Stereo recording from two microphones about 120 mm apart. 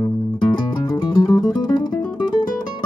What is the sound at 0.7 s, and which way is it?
Music, 35° left (ahead or behind).